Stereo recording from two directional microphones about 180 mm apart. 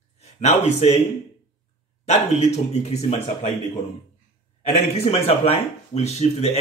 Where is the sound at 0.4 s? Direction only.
40° left (ahead or behind).